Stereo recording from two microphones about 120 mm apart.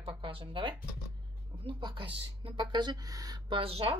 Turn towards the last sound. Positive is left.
turn(degrees=-50)  # may be behind; listen again after turning